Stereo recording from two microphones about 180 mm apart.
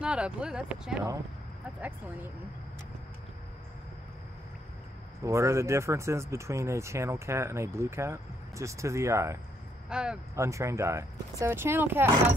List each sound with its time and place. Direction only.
0.0 s speech: 5° right (ahead or behind)
5.2 s speech: 15° right (ahead or behind)
9.8 s speech: 5° right (ahead or behind)
10.3 s speech: 15° right (ahead or behind)